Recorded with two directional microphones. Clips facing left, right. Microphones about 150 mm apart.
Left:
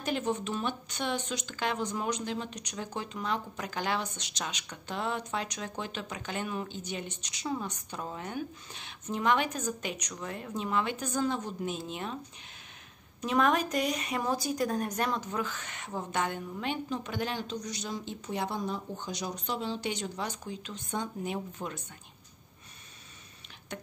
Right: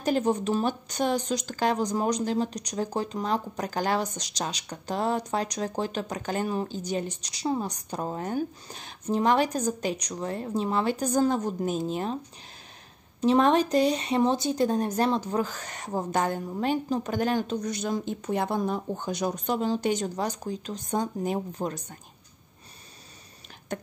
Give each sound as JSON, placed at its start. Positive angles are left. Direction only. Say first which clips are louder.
{"t": 0.0, "sound": "speech", "louder": "right 7 dB", "side_deg": -40}
{"t": 13.2, "sound": "speech", "louder": "right 6 dB", "side_deg": -30}
{"t": 23.7, "sound": "a sound", "louder": "right 7 dB", "side_deg": -45}